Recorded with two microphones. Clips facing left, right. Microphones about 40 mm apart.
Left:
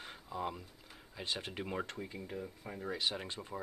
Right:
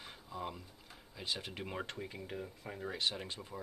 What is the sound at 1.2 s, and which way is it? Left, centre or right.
Speech, left.